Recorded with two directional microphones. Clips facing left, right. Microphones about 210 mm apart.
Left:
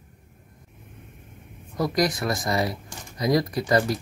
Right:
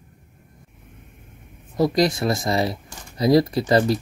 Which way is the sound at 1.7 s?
25° right (ahead or behind).